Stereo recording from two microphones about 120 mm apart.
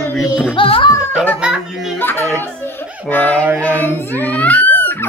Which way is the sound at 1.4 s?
10° right (ahead or behind).